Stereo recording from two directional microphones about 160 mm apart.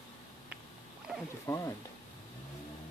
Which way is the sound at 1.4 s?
20° left (ahead or behind).